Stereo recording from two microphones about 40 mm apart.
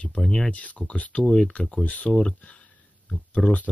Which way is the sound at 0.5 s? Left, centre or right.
Left.